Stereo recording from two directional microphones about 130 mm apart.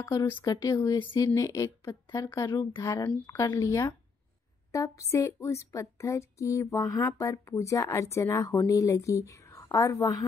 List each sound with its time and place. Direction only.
0.0 s speech: 25° left (ahead or behind)
2.3 s speech: 20° left (ahead or behind)